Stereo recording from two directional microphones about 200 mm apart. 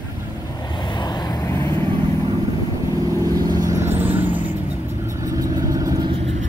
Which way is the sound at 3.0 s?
20° right (ahead or behind).